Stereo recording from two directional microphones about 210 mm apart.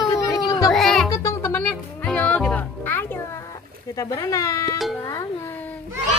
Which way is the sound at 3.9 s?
15° left (ahead or behind).